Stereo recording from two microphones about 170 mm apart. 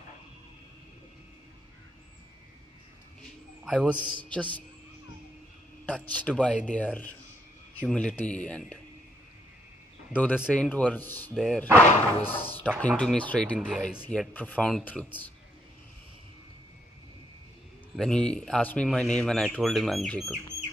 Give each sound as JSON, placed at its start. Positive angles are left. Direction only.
{"t": 3.6, "sound": "a man's voice", "side_deg": -5}
{"t": 4.3, "sound": "speech", "side_deg": 10}
{"t": 5.9, "sound": "speech", "side_deg": 10}
{"t": 10.1, "sound": "speech", "side_deg": 10}
{"t": 11.3, "sound": "speech", "side_deg": 0}
{"t": 17.9, "sound": "speech", "side_deg": 5}